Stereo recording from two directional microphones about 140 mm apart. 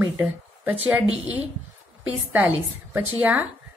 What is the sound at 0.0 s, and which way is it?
A woman's voice, 10° right (ahead or behind).